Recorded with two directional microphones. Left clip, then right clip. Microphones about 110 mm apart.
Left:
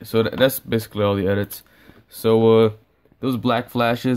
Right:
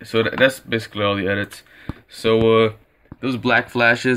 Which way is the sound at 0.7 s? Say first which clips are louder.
Even; 80° left.